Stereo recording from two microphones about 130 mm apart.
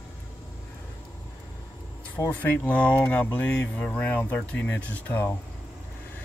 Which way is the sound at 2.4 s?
15° left (ahead or behind).